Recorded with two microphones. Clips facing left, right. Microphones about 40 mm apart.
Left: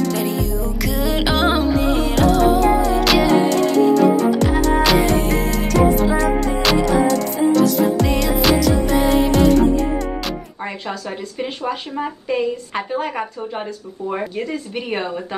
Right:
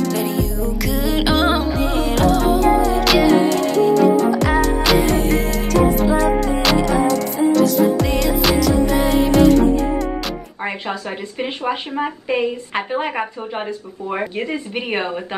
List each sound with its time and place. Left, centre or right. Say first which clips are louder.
0.1 s music: even; centre
10.6 s a woman's voice: right 4 dB; right